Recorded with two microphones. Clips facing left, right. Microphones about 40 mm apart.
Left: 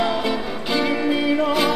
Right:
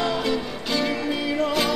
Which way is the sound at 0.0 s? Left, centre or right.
Centre.